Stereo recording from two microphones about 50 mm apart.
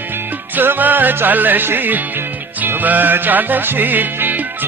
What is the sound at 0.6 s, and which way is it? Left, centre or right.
Music, right.